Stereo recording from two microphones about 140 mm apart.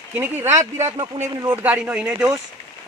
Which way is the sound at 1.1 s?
40° right (ahead or behind).